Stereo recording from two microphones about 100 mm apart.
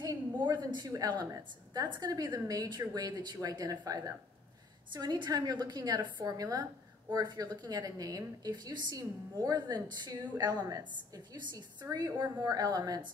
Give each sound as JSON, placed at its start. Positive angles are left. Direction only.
{"t": 0.0, "sound": "a sound", "side_deg": -45}
{"t": 0.8, "sound": "a woman's voice", "side_deg": -40}
{"t": 11.9, "sound": "a woman's voice", "side_deg": -40}